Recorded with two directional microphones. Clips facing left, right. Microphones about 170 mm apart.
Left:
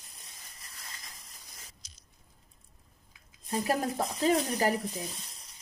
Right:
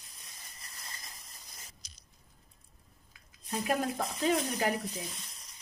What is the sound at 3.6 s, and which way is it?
Speech, 35° left (ahead or behind).